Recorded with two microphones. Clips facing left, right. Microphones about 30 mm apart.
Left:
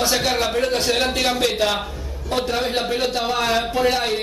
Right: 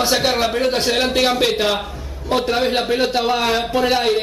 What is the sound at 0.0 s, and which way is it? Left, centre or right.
Speech, centre.